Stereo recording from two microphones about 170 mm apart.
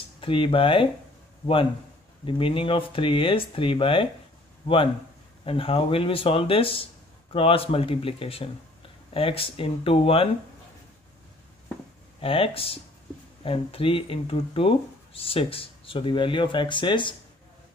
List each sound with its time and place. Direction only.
0.2 s speech: 30° left (ahead or behind)
2.2 s speech: 30° left (ahead or behind)
5.4 s speech: 35° left (ahead or behind)
12.2 s speech: 35° left (ahead or behind)